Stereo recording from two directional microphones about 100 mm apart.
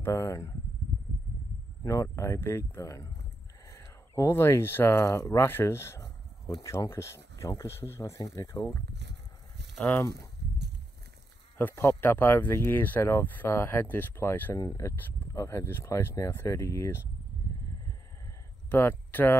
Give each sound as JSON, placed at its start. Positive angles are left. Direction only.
{"t": 0.0, "sound": "speech", "side_deg": 30}
{"t": 1.8, "sound": "speech", "side_deg": 30}
{"t": 9.8, "sound": "speech", "side_deg": 10}
{"t": 11.5, "sound": "speech", "side_deg": 15}
{"t": 15.3, "sound": "speech", "side_deg": 30}
{"t": 18.7, "sound": "speech", "side_deg": 20}